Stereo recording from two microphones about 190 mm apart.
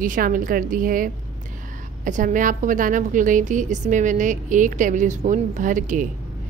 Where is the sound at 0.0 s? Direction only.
45° right (ahead or behind).